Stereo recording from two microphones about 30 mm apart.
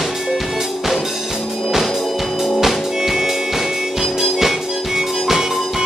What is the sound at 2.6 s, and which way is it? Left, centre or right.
Music, centre.